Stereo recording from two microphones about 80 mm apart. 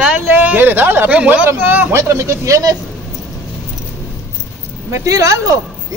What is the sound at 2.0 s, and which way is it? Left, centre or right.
Speech, right.